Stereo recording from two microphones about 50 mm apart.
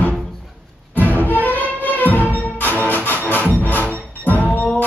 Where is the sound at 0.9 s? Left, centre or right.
Right.